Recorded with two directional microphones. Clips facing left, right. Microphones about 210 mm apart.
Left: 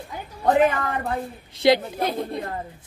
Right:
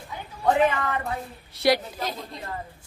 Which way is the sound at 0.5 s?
45° left (ahead or behind).